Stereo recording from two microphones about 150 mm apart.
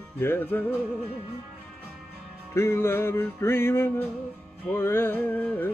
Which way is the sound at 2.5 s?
15° left (ahead or behind).